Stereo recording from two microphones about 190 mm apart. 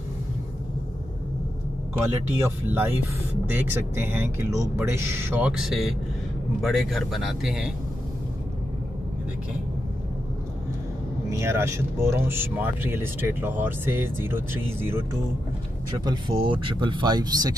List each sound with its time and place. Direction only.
2.0 s a man's voice: 10° right (ahead or behind)
11.2 s speech: 15° right (ahead or behind)
16.0 s speech: 25° right (ahead or behind)